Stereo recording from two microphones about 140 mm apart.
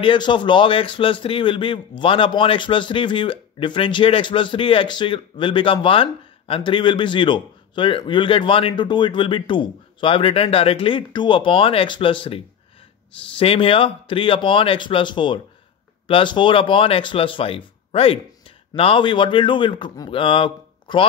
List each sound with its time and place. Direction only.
0.0 s speech: 35° left (ahead or behind)
13.4 s speech: 40° left (ahead or behind)